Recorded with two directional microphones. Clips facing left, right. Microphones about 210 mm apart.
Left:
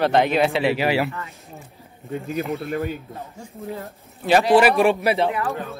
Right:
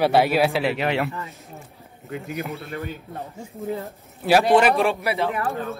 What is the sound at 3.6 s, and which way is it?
Speech, centre (ahead or behind).